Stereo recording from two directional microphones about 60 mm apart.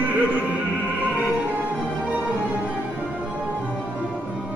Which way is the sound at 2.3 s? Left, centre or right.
Right.